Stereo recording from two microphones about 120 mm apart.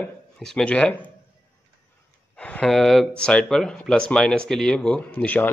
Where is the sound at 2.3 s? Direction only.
10° left (ahead or behind).